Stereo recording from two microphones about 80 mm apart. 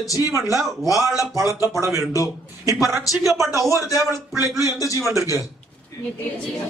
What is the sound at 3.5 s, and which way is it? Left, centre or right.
Speech, right.